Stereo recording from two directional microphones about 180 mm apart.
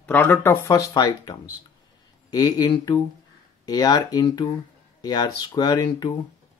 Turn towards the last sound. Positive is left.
turn(degrees=20)  # may be behind; listen again after turning